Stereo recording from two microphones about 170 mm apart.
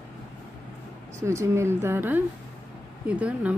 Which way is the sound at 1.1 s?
15° right (ahead or behind).